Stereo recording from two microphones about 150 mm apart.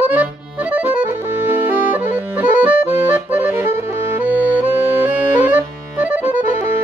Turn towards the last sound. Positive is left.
turn(degrees=-10)  # may be behind; listen again after turning